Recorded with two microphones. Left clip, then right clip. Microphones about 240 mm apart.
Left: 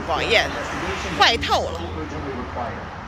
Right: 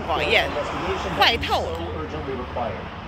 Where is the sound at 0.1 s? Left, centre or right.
Centre.